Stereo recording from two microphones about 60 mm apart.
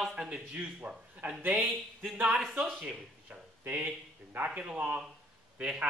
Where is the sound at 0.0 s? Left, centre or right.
Centre.